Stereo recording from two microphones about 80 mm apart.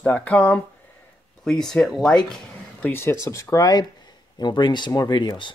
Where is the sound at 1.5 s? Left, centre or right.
Centre.